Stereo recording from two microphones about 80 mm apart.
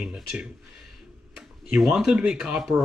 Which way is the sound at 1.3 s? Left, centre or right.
Centre.